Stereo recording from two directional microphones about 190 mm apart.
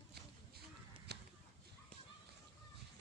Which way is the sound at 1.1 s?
60° right (ahead or behind).